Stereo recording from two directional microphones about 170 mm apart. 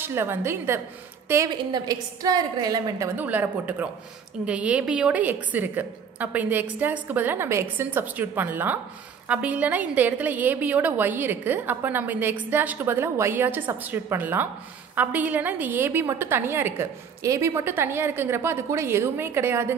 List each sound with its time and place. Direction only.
0.0 s a woman's voice: 15° right (ahead or behind)
3.2 s a woman's voice: 10° right (ahead or behind)